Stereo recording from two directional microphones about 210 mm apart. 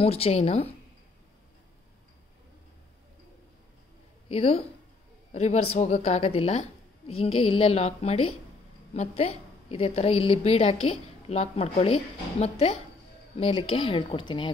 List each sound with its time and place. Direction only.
0.0 s a woman's voice: 30° left (ahead or behind)
4.3 s a woman's voice: 30° left (ahead or behind)